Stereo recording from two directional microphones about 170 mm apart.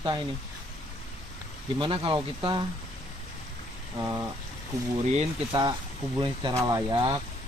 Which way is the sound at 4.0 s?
20° right (ahead or behind).